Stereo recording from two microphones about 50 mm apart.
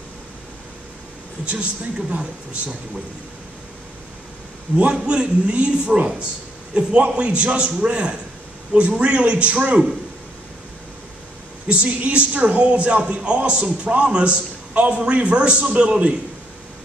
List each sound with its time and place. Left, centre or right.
1.4 s a man's voice: right
4.9 s a man's voice: right
11.6 s a man's voice: right